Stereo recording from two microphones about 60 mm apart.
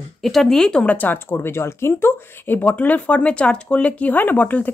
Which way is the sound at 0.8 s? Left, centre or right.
Left.